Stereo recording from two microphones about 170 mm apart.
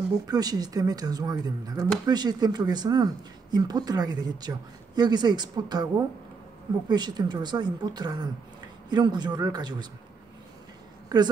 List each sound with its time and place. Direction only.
0.3 s speech: 25° right (ahead or behind)